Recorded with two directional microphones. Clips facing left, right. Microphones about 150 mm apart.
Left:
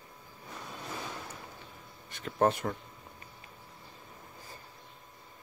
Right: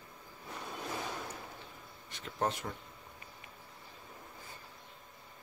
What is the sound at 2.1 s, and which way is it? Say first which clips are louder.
Speech: left 7 dB; 55° left (ahead or behind).